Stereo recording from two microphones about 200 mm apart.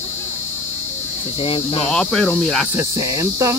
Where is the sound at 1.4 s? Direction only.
25° left (ahead or behind).